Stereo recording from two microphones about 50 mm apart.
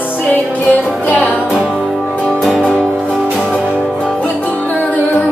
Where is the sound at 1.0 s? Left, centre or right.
Left.